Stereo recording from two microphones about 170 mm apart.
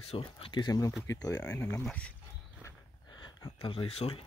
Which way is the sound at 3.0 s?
25° left (ahead or behind).